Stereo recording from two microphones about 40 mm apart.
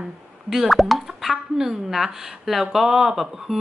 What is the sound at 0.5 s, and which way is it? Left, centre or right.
Speech, centre.